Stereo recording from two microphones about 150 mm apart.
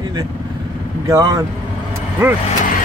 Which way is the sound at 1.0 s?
20° right (ahead or behind).